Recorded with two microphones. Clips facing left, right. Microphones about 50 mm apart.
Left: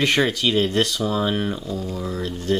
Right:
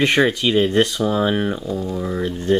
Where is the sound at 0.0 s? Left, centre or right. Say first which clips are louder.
Right 3 dB; centre.